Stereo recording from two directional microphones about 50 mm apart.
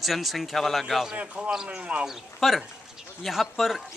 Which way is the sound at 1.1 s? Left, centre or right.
Right.